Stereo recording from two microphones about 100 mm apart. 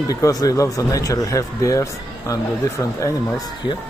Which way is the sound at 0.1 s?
35° left (ahead or behind).